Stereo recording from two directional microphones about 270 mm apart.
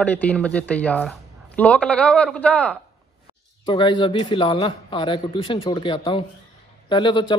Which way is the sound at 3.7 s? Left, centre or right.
Centre.